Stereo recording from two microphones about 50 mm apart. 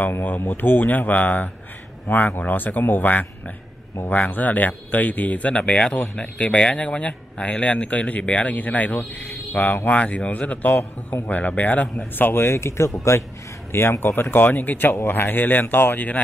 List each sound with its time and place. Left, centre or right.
0.5 s speech: left
12.5 s speech: left
13.7 s speech: left